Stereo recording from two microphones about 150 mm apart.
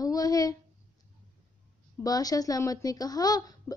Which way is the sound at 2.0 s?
25° left (ahead or behind).